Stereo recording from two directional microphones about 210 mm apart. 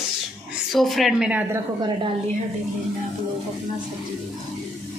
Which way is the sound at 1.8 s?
25° right (ahead or behind).